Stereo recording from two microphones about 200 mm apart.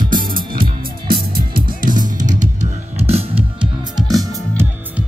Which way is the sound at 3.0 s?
30° right (ahead or behind).